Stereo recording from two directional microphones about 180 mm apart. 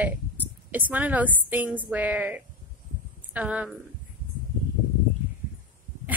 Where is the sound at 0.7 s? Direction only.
10° right (ahead or behind).